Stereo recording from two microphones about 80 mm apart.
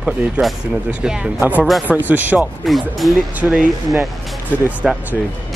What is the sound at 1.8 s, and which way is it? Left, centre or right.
Speech, centre.